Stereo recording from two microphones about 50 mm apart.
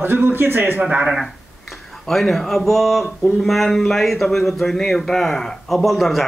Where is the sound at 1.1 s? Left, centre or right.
Centre.